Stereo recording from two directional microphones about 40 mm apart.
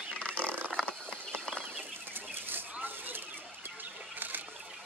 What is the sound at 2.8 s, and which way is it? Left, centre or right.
Bird, right.